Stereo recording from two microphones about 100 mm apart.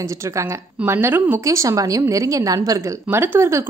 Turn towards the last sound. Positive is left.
turn(degrees=-25)  # may be behind; listen again after turning